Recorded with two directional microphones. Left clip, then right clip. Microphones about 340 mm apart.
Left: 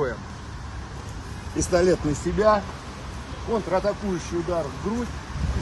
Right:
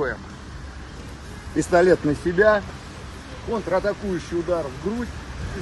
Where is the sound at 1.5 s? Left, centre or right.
Centre.